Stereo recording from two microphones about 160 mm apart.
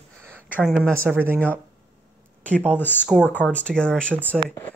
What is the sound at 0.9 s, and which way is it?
Speech, 15° right (ahead or behind).